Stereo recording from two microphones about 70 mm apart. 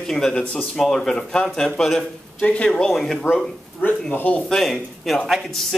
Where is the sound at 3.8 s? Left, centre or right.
Left.